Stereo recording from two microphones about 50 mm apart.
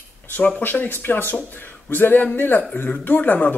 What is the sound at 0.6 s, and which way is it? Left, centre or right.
Speech, left.